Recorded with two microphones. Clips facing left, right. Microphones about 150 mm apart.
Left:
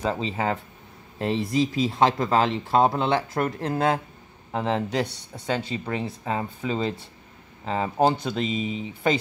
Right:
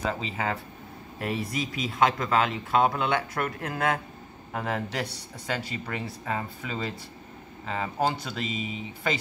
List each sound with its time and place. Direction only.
0.0 s speech: 30° left (ahead or behind)